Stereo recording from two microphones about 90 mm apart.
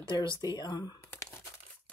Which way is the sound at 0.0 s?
60° left (ahead or behind).